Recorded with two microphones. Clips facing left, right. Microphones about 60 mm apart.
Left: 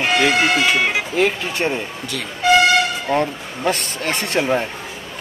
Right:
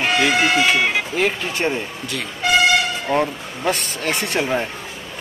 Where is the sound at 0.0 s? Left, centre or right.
Centre.